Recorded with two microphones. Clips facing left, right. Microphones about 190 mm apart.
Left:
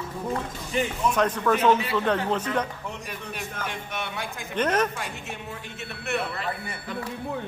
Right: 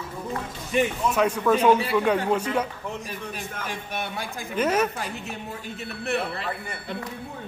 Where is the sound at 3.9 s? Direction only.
35° right (ahead or behind).